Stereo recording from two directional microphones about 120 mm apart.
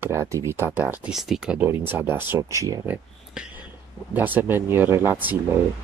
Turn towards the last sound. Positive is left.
turn(degrees=-15)  # may be behind; listen again after turning